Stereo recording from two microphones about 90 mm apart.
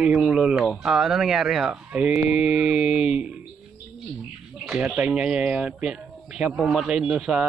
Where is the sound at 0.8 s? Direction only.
5° right (ahead or behind).